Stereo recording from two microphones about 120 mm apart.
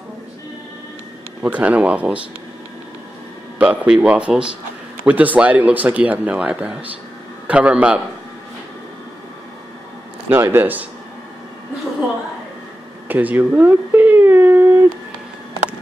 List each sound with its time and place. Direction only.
1.4 s speech: 10° right (ahead or behind)
3.5 s speech: 10° right (ahead or behind)
10.3 s speech: 20° right (ahead or behind)
13.1 s a sound: 15° right (ahead or behind)